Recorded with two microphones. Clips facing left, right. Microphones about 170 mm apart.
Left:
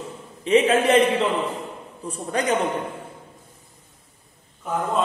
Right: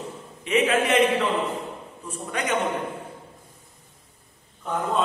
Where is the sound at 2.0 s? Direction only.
35° left (ahead or behind).